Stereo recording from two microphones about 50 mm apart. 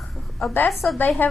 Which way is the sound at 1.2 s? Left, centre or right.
Left.